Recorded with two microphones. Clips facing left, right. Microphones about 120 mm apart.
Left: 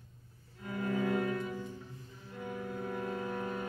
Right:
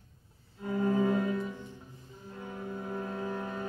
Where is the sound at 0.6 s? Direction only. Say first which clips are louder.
Right 6 dB; 30° right (ahead or behind).